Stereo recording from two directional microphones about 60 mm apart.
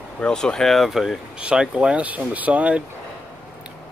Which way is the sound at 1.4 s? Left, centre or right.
Centre.